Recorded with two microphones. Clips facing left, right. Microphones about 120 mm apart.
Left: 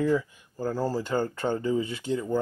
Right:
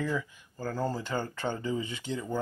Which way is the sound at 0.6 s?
5° left (ahead or behind).